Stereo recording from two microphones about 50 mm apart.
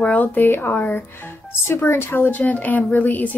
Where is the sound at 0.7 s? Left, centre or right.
Left.